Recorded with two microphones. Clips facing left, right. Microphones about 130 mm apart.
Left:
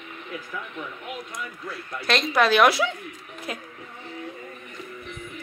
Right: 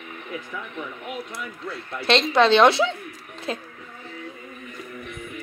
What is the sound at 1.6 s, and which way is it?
Speech, 25° right (ahead or behind).